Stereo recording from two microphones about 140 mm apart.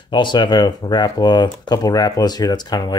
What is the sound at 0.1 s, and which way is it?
Speech, 35° left (ahead or behind).